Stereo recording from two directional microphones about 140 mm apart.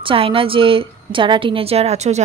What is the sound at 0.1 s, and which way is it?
Speech, 40° right (ahead or behind).